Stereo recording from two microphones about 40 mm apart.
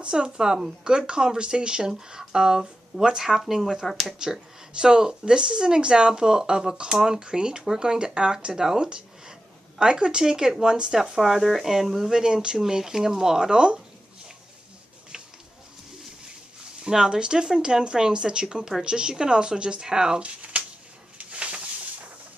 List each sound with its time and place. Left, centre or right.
0.0 s speech: right
3.8 s speech: centre
4.2 s speech: centre
12.2 s speech: centre
16.9 s speech: centre
20.2 s a sound: right